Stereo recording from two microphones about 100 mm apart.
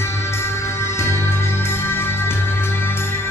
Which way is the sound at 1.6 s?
25° left (ahead or behind).